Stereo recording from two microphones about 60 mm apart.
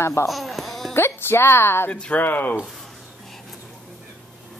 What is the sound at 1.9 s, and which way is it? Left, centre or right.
Speech, centre.